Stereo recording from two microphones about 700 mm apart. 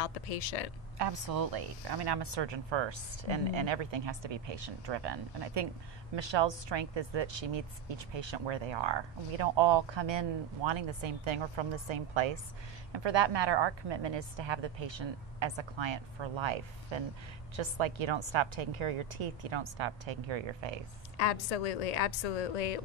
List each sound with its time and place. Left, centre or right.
0.0 s a woman's voice: left
0.9 s speech: right
21.2 s a woman's voice: left